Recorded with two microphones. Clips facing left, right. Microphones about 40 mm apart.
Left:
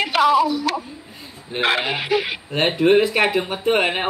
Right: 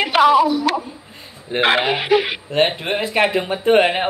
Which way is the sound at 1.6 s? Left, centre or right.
Right.